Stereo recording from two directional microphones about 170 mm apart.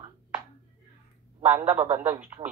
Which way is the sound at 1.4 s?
10° right (ahead or behind).